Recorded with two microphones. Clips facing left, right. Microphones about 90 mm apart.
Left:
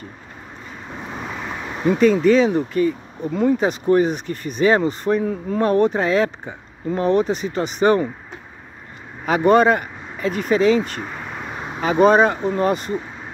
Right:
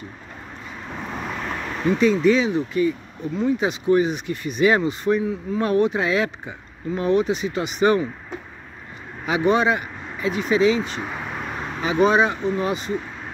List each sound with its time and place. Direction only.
1.1 s vehicle: 5° left (ahead or behind)
2.0 s speech: 45° left (ahead or behind)
5.6 s speech: 40° left (ahead or behind)
9.2 s speech: 50° left (ahead or behind)
11.0 s a sound: 5° right (ahead or behind)
11.8 s speech: 45° left (ahead or behind)